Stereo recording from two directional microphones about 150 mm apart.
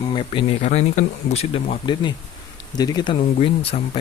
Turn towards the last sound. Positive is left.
turn(degrees=40)  # may be behind; listen again after turning